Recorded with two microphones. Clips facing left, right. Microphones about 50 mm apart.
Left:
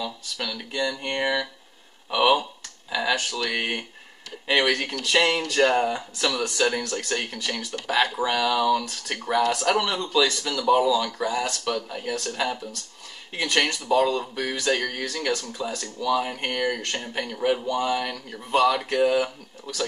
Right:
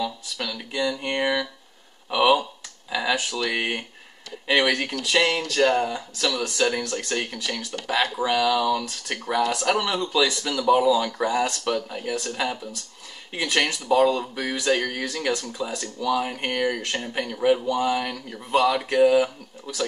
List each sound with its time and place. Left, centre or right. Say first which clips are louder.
0.0 s speech: right 2 dB; centre
5.0 s speech: even; centre
11.1 s speech: right 3 dB; right
11.6 s speech: right 2 dB; centre